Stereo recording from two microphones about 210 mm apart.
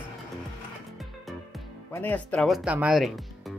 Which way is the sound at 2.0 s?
5° left (ahead or behind).